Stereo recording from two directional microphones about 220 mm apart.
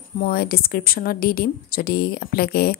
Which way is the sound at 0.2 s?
45° left (ahead or behind).